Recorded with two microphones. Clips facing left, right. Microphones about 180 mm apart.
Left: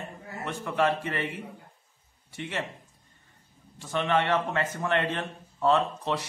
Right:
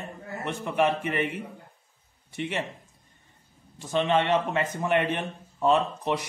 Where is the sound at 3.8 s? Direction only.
20° right (ahead or behind).